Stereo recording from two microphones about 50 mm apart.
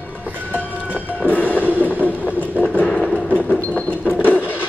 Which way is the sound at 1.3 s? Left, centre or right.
Left.